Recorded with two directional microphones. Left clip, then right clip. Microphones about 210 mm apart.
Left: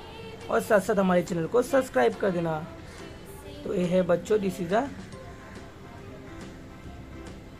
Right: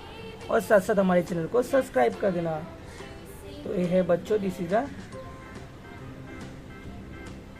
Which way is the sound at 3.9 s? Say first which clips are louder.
Even; 15° left (ahead or behind).